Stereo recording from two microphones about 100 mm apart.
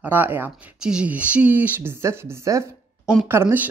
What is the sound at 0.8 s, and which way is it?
Speech, 10° right (ahead or behind).